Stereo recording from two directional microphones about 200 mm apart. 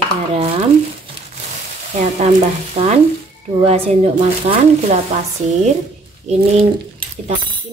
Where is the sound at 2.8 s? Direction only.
25° right (ahead or behind).